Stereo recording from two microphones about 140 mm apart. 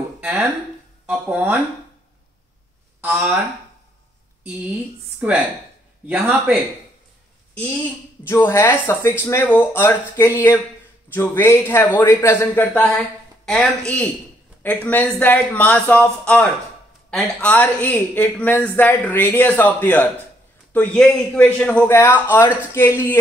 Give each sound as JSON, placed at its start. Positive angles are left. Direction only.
{"t": 0.2, "sound": "speech", "side_deg": -5}
{"t": 3.0, "sound": "speech", "side_deg": -15}
{"t": 5.2, "sound": "speech", "side_deg": -5}
{"t": 7.5, "sound": "speech", "side_deg": 10}